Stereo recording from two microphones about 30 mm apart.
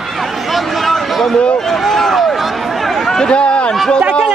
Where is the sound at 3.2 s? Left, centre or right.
Left.